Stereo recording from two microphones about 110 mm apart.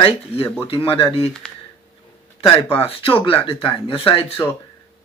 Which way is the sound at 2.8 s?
60° left (ahead or behind).